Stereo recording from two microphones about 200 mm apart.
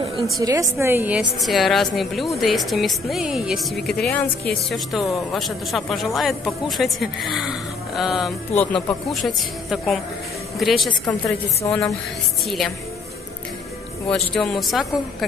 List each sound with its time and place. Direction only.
0.4 s a woman's voice: 15° right (ahead or behind); by 8.3 s centre (ahead or behind)
8.5 s a woman's voice: 10° left (ahead or behind)
9.1 s a woman's voice: centre (ahead or behind)
14.1 s a woman's voice: 5° left (ahead or behind)